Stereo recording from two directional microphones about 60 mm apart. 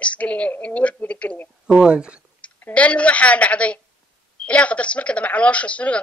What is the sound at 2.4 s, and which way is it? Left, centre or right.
Speech, left.